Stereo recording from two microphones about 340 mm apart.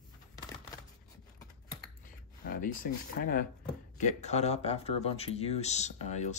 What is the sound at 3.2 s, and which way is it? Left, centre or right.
Speech, left.